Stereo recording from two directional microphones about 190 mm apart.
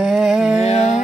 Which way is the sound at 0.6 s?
35° left (ahead or behind).